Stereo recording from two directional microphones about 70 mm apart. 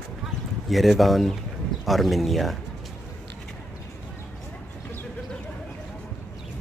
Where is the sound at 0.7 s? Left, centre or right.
Centre.